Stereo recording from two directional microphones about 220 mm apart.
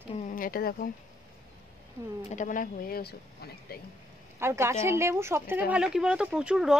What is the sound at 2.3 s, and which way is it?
Speech, 35° left (ahead or behind).